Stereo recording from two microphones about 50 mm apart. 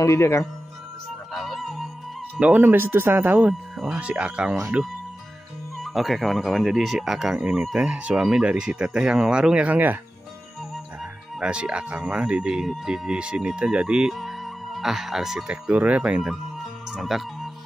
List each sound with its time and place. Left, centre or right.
0.0 s speech: left
1.3 s music: centre
2.6 s speech: right
3.7 s music: centre
4.0 s speech: right
5.8 s speech: centre
9.7 s speech: right
11.3 s speech: centre
14.1 s music: centre
15.4 s speech: centre
15.7 s speech: right
17.0 s music: centre